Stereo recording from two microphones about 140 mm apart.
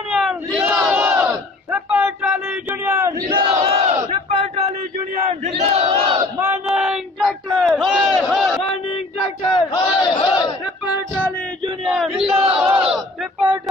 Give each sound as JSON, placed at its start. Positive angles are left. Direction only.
{"t": 0.1, "sound": "battle cry", "side_deg": -5}
{"t": 3.8, "sound": "battle cry", "side_deg": -45}
{"t": 5.9, "sound": "battle cry", "side_deg": -30}
{"t": 6.6, "sound": "crowd", "side_deg": -5}
{"t": 8.8, "sound": "a sound", "side_deg": 40}
{"t": 9.8, "sound": "battle cry", "side_deg": 30}
{"t": 11.8, "sound": "a sound", "side_deg": 0}
{"t": 12.1, "sound": "crowd", "side_deg": -5}
{"t": 12.6, "sound": "battle cry", "side_deg": -5}